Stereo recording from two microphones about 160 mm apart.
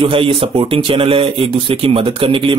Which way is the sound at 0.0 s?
35° right (ahead or behind).